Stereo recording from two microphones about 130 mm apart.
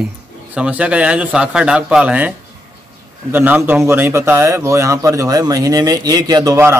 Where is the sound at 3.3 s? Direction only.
15° right (ahead or behind).